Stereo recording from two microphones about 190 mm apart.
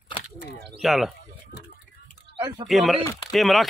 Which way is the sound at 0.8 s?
Centre (ahead or behind).